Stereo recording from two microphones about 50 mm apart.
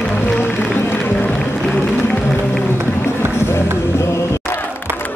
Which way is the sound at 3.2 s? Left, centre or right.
Left.